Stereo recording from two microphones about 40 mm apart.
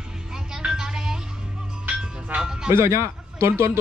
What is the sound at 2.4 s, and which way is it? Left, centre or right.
Music, centre.